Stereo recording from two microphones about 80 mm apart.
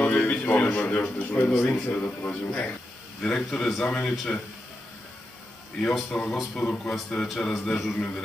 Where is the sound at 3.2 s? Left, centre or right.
Centre.